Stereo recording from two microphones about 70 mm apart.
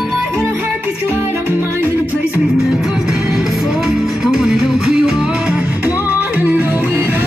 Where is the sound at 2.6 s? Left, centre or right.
Centre.